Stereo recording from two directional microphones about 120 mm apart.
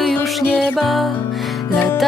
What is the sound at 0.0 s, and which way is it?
Music, centre (ahead or behind).